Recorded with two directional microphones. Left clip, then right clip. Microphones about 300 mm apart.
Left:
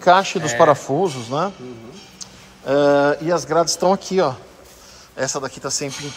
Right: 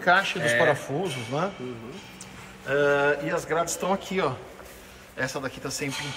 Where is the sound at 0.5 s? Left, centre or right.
Left.